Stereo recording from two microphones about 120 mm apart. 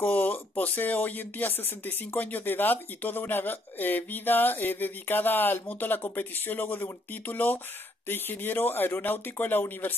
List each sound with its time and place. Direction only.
0.0 s speech: 15° left (ahead or behind)